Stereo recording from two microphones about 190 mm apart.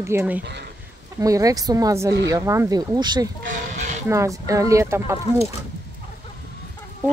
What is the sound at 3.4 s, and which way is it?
Speech, 40° right (ahead or behind).